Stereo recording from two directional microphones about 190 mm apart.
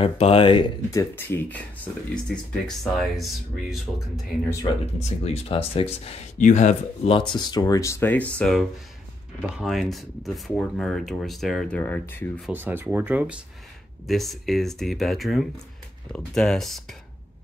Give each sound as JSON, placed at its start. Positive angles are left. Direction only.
{"t": 0.0, "sound": "speech", "side_deg": 30}
{"t": 1.1, "sound": "speech", "side_deg": 10}
{"t": 4.7, "sound": "speech", "side_deg": 20}
{"t": 7.2, "sound": "speech", "side_deg": 20}
{"t": 12.4, "sound": "speech", "side_deg": -5}